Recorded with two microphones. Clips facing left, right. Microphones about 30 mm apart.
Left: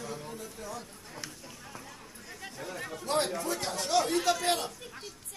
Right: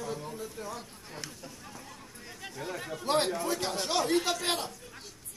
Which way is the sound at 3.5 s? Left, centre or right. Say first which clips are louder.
Right 2 dB; right.